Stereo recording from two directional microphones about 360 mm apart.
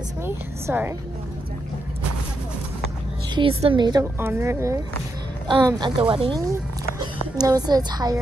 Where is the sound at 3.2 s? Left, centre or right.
Centre.